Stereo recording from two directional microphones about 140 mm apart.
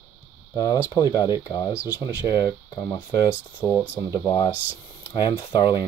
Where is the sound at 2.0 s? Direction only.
30° left (ahead or behind); by 3.8 s 15° left (ahead or behind).